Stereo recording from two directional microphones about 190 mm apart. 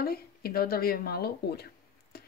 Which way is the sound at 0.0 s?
50° left (ahead or behind).